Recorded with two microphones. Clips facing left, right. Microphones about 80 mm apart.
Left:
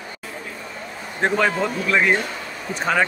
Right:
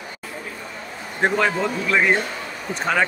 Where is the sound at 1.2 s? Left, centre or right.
Centre.